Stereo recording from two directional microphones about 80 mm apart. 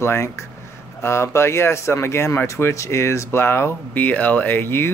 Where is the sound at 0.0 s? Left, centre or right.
Left.